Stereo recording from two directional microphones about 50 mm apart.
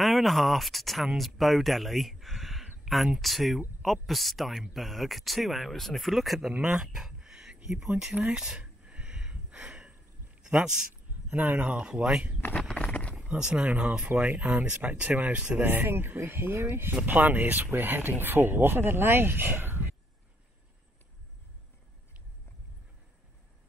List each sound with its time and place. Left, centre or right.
0.0 s speech: centre
2.8 s a sound: centre
3.2 s speech: centre
6.7 s a sound: centre
10.4 s speech: centre
11.2 s speech: right
13.4 s speech: centre
13.8 s speech: right
15.6 s speech: right